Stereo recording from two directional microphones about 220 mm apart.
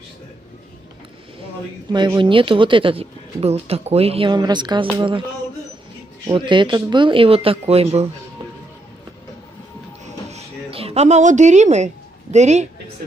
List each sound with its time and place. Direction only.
1.9 s speech: 20° right (ahead or behind)
6.2 s speech: 20° right (ahead or behind)
10.0 s a sound: 30° right (ahead or behind)